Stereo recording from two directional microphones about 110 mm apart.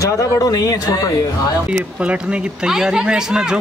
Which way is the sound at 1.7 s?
10° right (ahead or behind).